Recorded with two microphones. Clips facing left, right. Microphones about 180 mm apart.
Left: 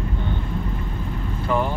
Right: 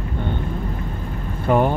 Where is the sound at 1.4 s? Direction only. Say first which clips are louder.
Right 6 dB; 55° right (ahead or behind).